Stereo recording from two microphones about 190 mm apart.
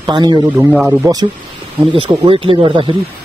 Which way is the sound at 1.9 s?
30° right (ahead or behind).